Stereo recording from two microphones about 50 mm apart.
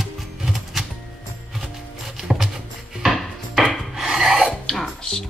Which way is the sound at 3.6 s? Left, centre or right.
Centre.